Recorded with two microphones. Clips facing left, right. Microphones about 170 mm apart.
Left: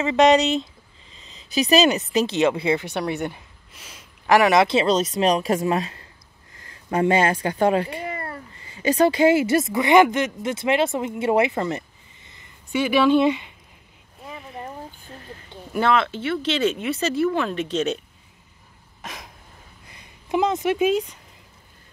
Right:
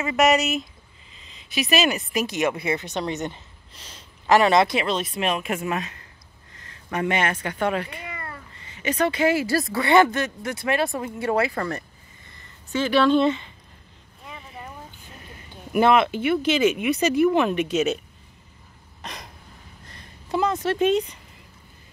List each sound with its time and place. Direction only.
0.0 s a woman's voice: 30° left (ahead or behind)
3.3 s a sound: 10° left (ahead or behind)
4.8 s speech: 40° left (ahead or behind)
6.5 s cat: 30° left (ahead or behind)
8.6 s a woman's voice: 30° left (ahead or behind); by 13.5 s 10° left (ahead or behind)
15.7 s speech: 15° right (ahead or behind)
19.0 s a sound: centre (ahead or behind)
19.9 s speech: 15° left (ahead or behind)